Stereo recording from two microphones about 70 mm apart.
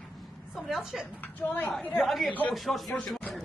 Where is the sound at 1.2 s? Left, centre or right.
Left.